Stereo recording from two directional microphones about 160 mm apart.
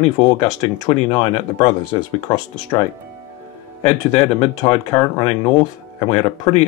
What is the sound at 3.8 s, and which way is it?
Speech, 35° left (ahead or behind).